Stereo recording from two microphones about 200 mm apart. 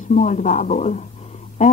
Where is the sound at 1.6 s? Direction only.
35° left (ahead or behind).